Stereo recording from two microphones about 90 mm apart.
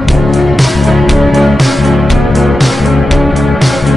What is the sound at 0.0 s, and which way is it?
Music, centre (ahead or behind).